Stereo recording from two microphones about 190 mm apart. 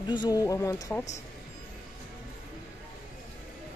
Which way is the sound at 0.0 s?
25° left (ahead or behind).